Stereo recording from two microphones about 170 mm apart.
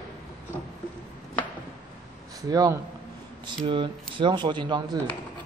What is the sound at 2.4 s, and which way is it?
A man's voice, 20° right (ahead or behind).